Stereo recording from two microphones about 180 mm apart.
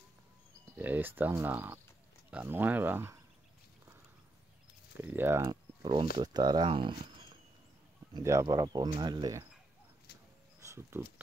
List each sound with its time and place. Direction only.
0.7 s speech: 10° right (ahead or behind)
4.9 s speech: 10° right (ahead or behind); by 7.3 s 25° right (ahead or behind)
8.1 s speech: 15° right (ahead or behind)
10.6 s a sound: 15° right (ahead or behind)